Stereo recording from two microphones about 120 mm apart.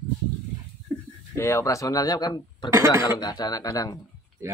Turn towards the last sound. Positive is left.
turn(degrees=-25)  # may be behind; listen again after turning